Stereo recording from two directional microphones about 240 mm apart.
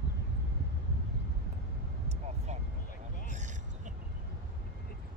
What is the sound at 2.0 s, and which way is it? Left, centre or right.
Vehicle, right.